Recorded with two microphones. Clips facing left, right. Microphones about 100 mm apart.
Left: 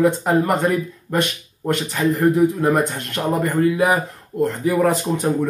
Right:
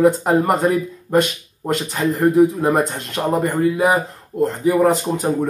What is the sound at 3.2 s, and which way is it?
Speech, 25° right (ahead or behind).